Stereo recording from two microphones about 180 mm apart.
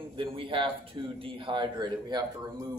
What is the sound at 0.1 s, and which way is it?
Speech, 30° right (ahead or behind).